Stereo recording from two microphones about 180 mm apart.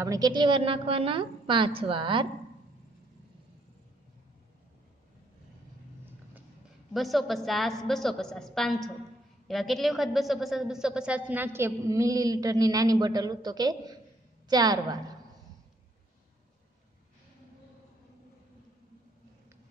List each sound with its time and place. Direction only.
0.0 s a woman's voice: 20° right (ahead or behind)
6.9 s a woman's voice: centre (ahead or behind); by 15.1 s 20° right (ahead or behind)